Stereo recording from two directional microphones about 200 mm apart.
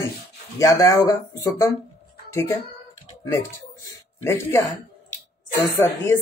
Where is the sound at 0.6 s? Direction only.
15° left (ahead or behind).